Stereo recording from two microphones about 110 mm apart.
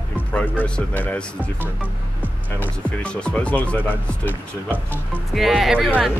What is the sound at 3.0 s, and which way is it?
Speech, 10° left (ahead or behind).